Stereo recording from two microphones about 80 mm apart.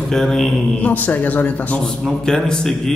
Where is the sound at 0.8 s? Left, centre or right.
Left.